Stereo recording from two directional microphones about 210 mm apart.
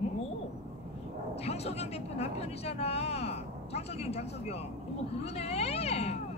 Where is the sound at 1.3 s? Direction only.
30° left (ahead or behind).